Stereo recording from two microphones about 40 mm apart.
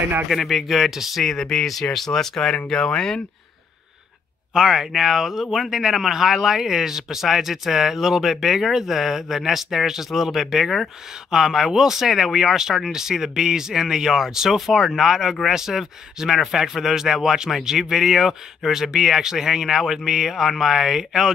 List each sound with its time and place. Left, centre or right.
0.3 s speech: centre
1.2 s speech: centre
4.6 s speech: centre